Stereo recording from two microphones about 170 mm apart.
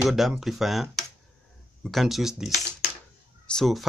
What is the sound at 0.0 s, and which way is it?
Speech, centre (ahead or behind).